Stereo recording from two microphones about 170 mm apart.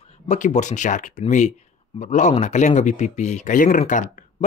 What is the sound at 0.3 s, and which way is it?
Speech, 45° left (ahead or behind).